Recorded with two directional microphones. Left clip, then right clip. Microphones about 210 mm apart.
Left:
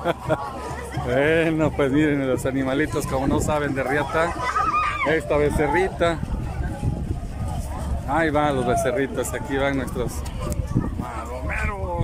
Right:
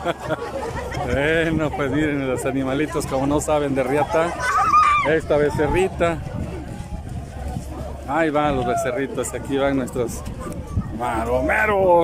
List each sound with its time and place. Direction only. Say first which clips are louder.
0.0 s speech: left 1 dB; 5° left (ahead or behind)
4.4 s a sound: right 6 dB; 50° right (ahead or behind)
5.1 s speech: right 2 dB; 5° right (ahead or behind)
8.1 s speech: right 1 dB; 5° right (ahead or behind)
11.0 s speech: right 10 dB; 45° right (ahead or behind)